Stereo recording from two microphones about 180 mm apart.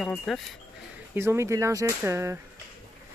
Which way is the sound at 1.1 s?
15° right (ahead or behind).